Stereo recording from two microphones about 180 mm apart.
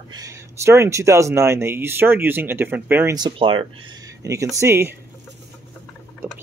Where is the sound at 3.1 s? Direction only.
25° right (ahead or behind).